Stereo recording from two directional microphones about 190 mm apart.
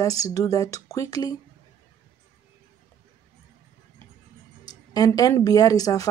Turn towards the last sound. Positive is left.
turn(degrees=20)  # may be behind; listen again after turning